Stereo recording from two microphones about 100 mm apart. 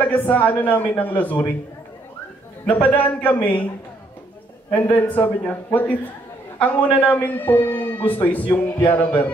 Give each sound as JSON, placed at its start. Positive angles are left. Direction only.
{"t": 0.0, "sound": "speech", "side_deg": 15}
{"t": 2.6, "sound": "speech", "side_deg": 15}
{"t": 4.6, "sound": "speech", "side_deg": 20}
{"t": 7.0, "sound": "speech", "side_deg": 15}